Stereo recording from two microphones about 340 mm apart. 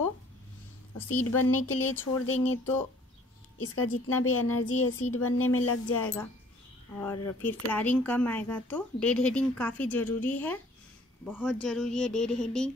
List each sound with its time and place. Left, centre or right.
1.0 s speech: left
7.0 s speech: centre